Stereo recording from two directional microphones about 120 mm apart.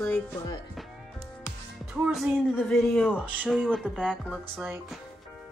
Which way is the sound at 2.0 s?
5° right (ahead or behind).